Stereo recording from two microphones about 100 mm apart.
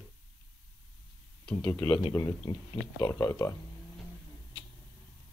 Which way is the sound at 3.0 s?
40° left (ahead or behind).